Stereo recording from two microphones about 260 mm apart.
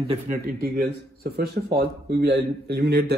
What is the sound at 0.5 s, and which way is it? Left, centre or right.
A man's voice, right.